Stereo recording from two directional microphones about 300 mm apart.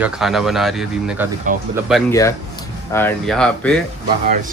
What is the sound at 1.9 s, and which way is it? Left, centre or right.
Speech, centre.